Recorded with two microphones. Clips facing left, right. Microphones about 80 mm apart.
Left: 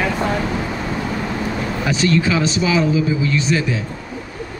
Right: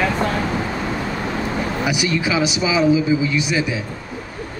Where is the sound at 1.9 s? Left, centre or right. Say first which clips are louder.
Left 5 dB; centre.